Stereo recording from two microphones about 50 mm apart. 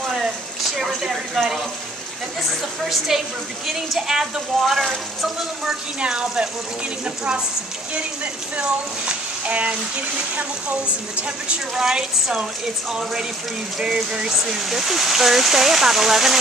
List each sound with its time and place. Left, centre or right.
0.7 s speech: centre
3.1 s speech: centre
5.9 s speech: centre
8.5 s speech: right
13.7 s speech: centre